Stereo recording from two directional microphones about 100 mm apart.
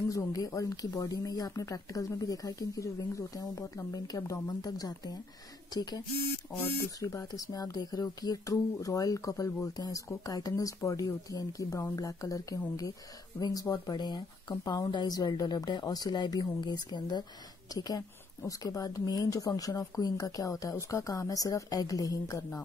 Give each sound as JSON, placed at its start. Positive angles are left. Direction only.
{"t": 0.1, "sound": "a woman's voice", "side_deg": 35}